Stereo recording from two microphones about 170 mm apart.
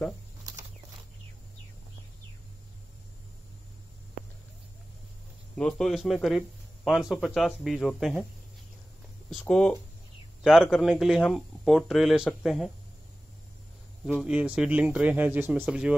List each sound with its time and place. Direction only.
0.4 s a sound: 20° right (ahead or behind)
5.6 s speech: 5° left (ahead or behind)
9.3 s speech: centre (ahead or behind)
14.0 s speech: 5° right (ahead or behind)